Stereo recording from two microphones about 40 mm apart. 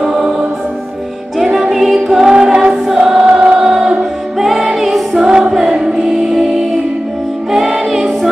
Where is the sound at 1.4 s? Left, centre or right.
Centre.